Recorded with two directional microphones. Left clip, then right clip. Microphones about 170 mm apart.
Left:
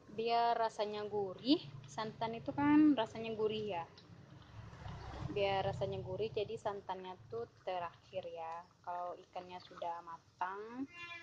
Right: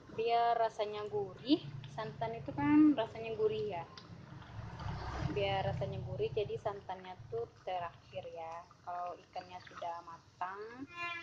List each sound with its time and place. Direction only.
0.1 s speech: 50° left (ahead or behind)
5.3 s speech: 50° left (ahead or behind)